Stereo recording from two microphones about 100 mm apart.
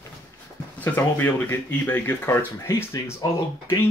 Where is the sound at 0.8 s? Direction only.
20° left (ahead or behind).